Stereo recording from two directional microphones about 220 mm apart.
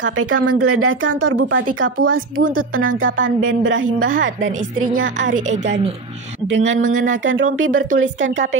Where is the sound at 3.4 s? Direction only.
65° right (ahead or behind).